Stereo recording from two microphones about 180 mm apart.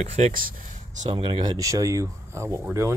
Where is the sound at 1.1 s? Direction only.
25° right (ahead or behind).